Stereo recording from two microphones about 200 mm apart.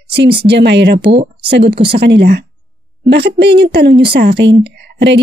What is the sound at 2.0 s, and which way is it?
A woman's voice, 55° right (ahead or behind).